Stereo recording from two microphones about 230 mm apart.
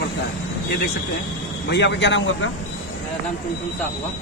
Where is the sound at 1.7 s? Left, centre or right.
Left.